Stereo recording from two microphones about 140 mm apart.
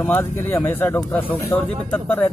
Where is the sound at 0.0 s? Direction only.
15° left (ahead or behind).